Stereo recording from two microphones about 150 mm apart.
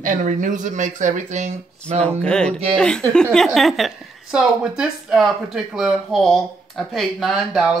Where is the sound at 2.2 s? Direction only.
5° left (ahead or behind).